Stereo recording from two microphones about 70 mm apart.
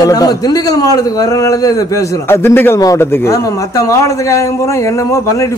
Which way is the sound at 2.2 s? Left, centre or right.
Left.